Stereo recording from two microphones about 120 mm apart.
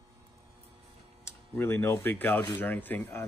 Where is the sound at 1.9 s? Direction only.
15° left (ahead or behind).